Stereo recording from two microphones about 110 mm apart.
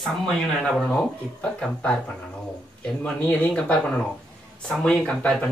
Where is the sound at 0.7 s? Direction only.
5° left (ahead or behind).